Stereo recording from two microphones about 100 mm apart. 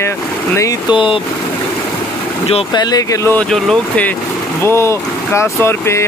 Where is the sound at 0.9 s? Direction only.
60° left (ahead or behind).